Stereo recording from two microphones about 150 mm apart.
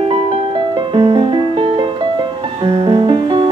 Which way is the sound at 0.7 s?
35° right (ahead or behind).